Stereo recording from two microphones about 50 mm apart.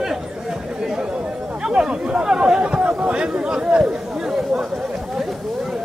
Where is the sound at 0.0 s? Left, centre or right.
Centre.